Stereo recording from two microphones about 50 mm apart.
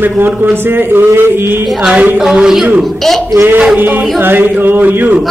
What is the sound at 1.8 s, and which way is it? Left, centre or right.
Speech, right.